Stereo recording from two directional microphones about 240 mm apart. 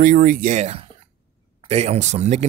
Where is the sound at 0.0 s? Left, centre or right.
Right.